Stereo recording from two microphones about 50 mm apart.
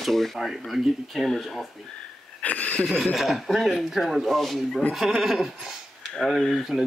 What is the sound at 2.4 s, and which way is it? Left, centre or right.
Speech, left.